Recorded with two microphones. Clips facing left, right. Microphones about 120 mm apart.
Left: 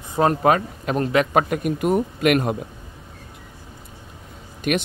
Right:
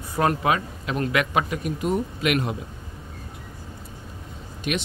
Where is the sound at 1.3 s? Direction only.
55° left (ahead or behind).